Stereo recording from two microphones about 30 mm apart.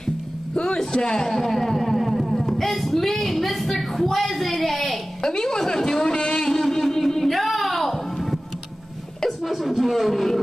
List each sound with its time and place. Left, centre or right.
0.9 s speech: left
1.3 s speech: centre
5.4 s speech: centre
6.2 s a sound: centre
7.2 s a sound: centre
9.4 s speech: centre